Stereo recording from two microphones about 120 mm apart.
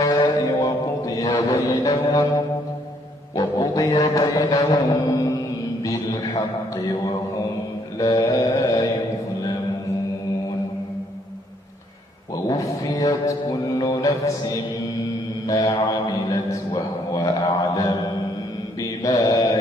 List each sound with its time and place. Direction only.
0.1 s mantra: 35° left (ahead or behind)
3.3 s music: 30° left (ahead or behind)
8.0 s a man's voice: 30° left (ahead or behind)
12.8 s a man's voice: 30° left (ahead or behind)
15.4 s mantra: 30° left (ahead or behind)
15.8 s a man's voice: 30° left (ahead or behind)
18.8 s music: 30° left (ahead or behind)